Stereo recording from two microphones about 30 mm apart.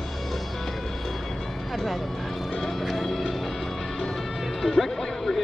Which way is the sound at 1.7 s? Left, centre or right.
Centre.